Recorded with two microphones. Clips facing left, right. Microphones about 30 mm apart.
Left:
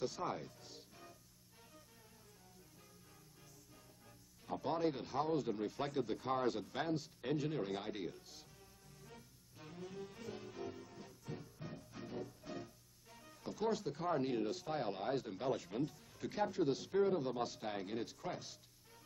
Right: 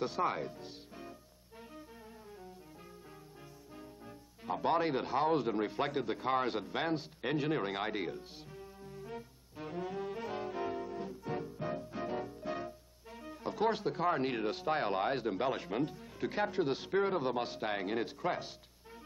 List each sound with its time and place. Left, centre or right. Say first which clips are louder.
0.0 s speech: right 7 dB; right
3.7 s speech: right 12 dB; right